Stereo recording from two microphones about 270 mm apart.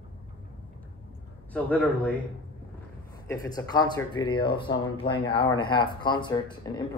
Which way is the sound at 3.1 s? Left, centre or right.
Centre.